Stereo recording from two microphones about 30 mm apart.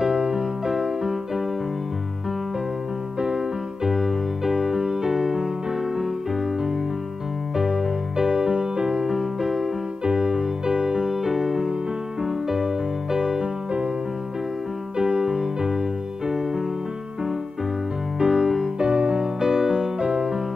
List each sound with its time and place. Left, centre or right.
0.0 s music: right
3.2 s music: right
3.8 s music: centre
7.5 s music: centre
9.1 s music: centre
10.0 s keyboard: right
11.1 s music: centre
15.0 s music: right
18.2 s music: centre
18.8 s music: right
20.0 s music: right